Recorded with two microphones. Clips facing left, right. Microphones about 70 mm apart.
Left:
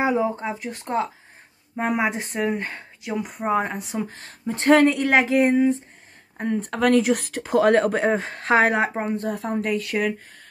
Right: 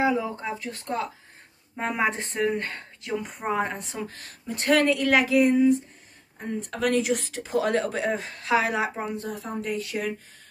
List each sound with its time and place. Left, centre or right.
0.0 s speech: left; by 4.0 s centre
4.0 s a woman's voice: left
5.5 s speech: left
6.3 s speech: left